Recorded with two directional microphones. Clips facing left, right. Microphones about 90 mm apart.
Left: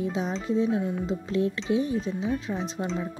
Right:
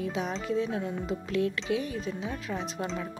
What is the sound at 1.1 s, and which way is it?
Speech, 30° left (ahead or behind).